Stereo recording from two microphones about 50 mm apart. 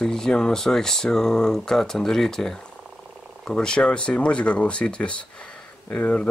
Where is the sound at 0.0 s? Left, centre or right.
Centre.